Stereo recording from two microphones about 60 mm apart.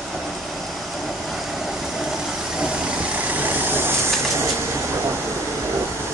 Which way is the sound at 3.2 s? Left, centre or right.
Right.